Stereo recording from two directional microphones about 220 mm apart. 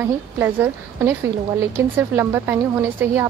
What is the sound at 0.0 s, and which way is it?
A woman's voice, 10° right (ahead or behind).